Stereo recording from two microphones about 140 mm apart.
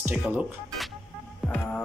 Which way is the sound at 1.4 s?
5° left (ahead or behind).